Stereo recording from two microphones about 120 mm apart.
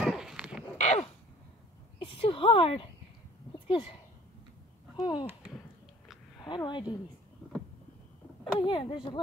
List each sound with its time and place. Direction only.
0.0 s dog: centre (ahead or behind)
0.7 s a sound: 70° left (ahead or behind)
2.0 s speech: 45° left (ahead or behind)
3.5 s a sound: 45° left (ahead or behind)
4.9 s speech: 40° left (ahead or behind)
6.4 s speech: 40° left (ahead or behind)
8.5 s speech: 40° left (ahead or behind)